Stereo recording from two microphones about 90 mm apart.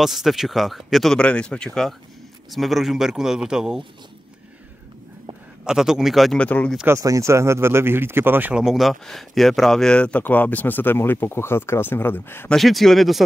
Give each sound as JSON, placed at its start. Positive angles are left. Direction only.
{"t": 0.0, "sound": "a man's voice", "side_deg": -5}
{"t": 1.1, "sound": "a man's voice", "side_deg": 10}
{"t": 5.7, "sound": "a man's voice", "side_deg": -5}
{"t": 6.3, "sound": "speech", "side_deg": 15}
{"t": 6.9, "sound": "speech", "side_deg": -35}
{"t": 8.5, "sound": "speech", "side_deg": -5}
{"t": 12.4, "sound": "a man's voice", "side_deg": 0}